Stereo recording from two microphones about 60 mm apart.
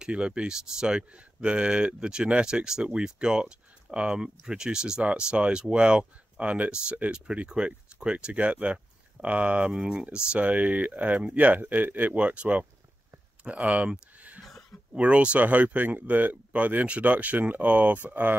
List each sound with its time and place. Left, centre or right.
0.0 s speech: centre
9.7 s speech: centre
10.1 s speech: right
14.4 s a sound: centre
15.0 s speech: right